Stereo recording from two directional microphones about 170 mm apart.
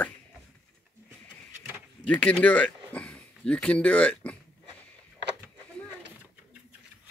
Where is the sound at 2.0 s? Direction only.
10° left (ahead or behind).